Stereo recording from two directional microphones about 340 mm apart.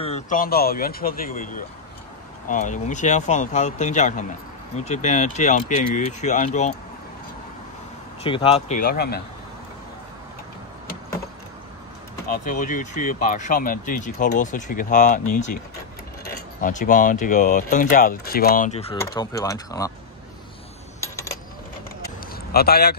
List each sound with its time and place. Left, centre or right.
0.0 s speech: left
8.2 s speech: centre
12.3 s speech: left
16.6 s speech: left
22.3 s a sound: left